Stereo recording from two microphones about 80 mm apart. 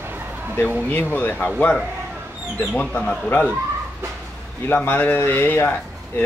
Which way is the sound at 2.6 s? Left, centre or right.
Centre.